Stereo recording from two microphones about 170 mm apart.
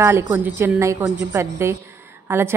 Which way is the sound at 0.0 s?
15° right (ahead or behind).